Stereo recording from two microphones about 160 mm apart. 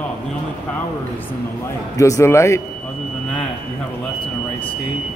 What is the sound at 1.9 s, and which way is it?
Speech, 20° left (ahead or behind).